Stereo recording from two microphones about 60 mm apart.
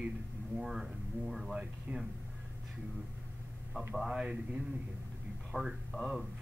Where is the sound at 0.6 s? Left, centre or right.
Centre.